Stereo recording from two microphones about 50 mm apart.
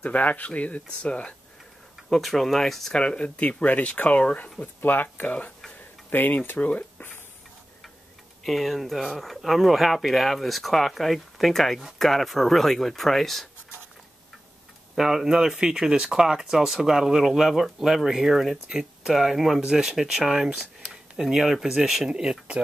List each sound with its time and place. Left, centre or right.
0.0 s speech: left
2.0 s speech: centre
3.0 s speech: left
5.2 s speech: left
6.0 s speech: left
8.5 s speech: centre
15.0 s speech: centre
22.1 s speech: centre